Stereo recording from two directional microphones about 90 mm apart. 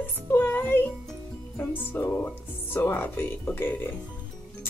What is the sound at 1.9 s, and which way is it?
Speech, 20° left (ahead or behind).